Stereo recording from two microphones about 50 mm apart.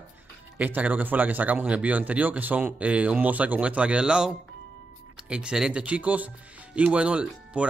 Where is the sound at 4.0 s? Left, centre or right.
Centre.